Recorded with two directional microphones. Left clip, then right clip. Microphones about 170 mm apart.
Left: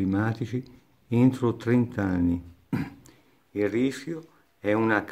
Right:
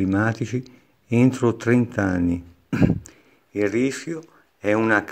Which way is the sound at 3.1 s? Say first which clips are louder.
Right 5 dB; 25° right (ahead or behind).